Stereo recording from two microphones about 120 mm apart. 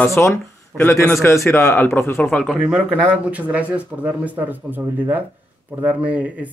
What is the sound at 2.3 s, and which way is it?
Speech, 5° left (ahead or behind).